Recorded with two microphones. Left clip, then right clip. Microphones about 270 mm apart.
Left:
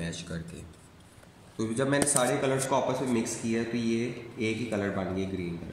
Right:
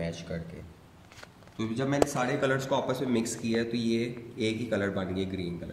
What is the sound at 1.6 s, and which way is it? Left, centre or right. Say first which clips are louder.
Speech: even; right.